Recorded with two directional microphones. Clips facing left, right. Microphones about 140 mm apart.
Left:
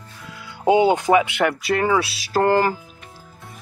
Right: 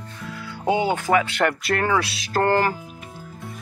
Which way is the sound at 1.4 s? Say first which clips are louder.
Left 2 dB; 5° left (ahead or behind).